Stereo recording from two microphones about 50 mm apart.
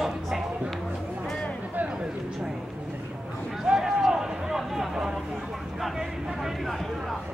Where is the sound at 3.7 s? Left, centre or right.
Centre.